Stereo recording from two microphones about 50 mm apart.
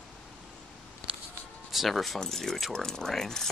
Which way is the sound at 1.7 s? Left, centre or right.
Centre.